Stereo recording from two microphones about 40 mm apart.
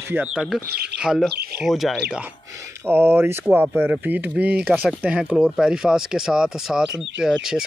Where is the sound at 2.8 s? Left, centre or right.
Right.